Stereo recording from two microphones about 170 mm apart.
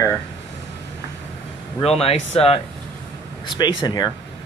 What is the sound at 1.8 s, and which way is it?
Speech, 35° left (ahead or behind).